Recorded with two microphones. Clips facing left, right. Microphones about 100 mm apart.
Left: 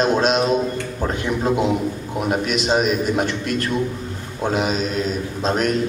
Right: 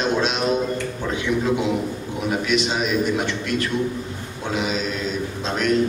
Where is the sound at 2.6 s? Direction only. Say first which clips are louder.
Left 3 dB; 45° left (ahead or behind).